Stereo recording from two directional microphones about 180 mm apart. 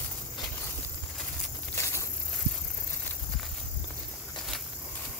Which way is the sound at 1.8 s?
15° left (ahead or behind).